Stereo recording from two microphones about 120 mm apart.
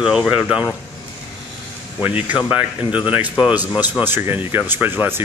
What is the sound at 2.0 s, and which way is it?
Speech, 10° right (ahead or behind).